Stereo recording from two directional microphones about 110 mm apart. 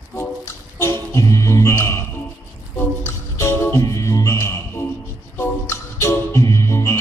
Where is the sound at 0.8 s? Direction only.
25° left (ahead or behind).